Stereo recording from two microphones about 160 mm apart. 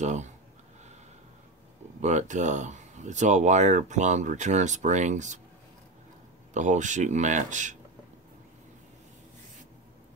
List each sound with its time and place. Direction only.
0.0 s speech: 45° right (ahead or behind)
2.0 s speech: 50° right (ahead or behind)
6.5 s speech: 50° right (ahead or behind)